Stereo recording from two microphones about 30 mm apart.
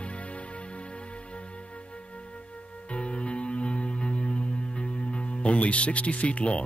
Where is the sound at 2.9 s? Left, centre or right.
Left.